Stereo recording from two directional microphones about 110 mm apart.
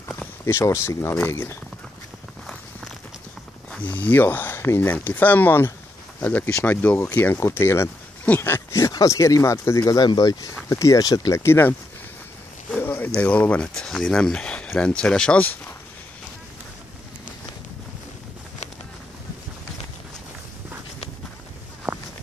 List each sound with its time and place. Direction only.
0.5 s speech: 25° left (ahead or behind)
3.7 s speech: 15° left (ahead or behind); by 11.4 s 35° left (ahead or behind)
11.4 s speech: 20° left (ahead or behind)
12.7 s a sound: 15° left (ahead or behind)
13.2 s speech: 10° left (ahead or behind)
21.9 s walk: 10° right (ahead or behind)